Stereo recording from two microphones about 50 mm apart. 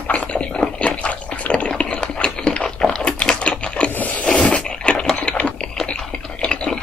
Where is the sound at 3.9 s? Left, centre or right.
Left.